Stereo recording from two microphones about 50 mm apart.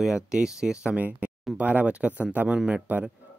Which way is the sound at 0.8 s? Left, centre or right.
Right.